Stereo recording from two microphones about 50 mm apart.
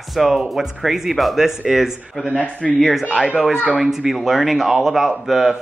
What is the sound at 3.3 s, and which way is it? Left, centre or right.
Speech, centre.